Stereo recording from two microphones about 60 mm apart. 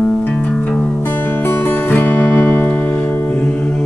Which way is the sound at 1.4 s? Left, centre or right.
Left.